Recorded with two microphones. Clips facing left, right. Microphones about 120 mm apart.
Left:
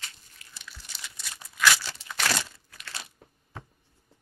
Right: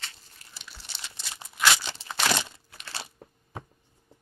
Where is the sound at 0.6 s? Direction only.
30° right (ahead or behind).